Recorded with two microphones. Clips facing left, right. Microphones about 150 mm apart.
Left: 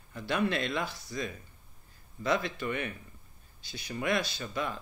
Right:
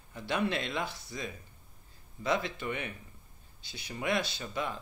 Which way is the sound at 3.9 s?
20° right (ahead or behind).